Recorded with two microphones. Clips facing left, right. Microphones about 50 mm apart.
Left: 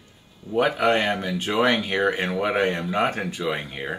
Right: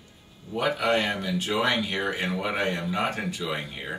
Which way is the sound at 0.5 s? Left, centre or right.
Left.